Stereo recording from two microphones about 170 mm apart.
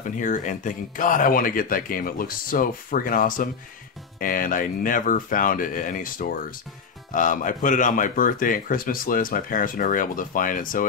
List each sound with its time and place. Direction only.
0.0 s speech: 50° left (ahead or behind)